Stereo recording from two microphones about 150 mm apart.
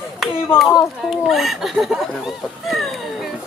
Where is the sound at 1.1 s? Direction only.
Centre (ahead or behind).